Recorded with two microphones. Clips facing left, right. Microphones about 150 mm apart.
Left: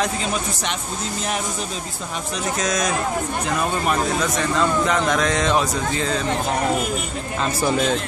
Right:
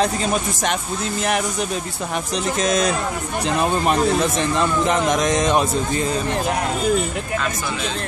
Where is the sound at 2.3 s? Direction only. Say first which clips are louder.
Right 3 dB; 25° right (ahead or behind).